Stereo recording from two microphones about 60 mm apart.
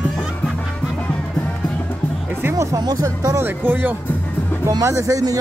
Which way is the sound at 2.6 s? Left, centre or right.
Right.